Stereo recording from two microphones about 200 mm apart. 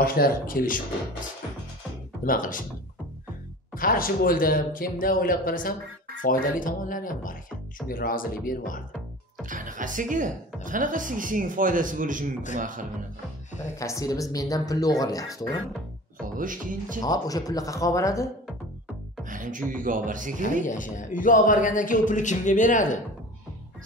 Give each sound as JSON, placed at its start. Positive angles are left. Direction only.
{"t": 0.0, "sound": "speech", "side_deg": 50}
{"t": 2.2, "sound": "speech", "side_deg": 45}
{"t": 3.7, "sound": "speech", "side_deg": 45}
{"t": 9.5, "sound": "speech", "side_deg": -40}
{"t": 13.7, "sound": "speech", "side_deg": 15}
{"t": 16.3, "sound": "speech", "side_deg": -40}
{"t": 17.0, "sound": "speech", "side_deg": 20}
{"t": 19.2, "sound": "speech", "side_deg": -40}
{"t": 20.6, "sound": "a man's voice", "side_deg": 40}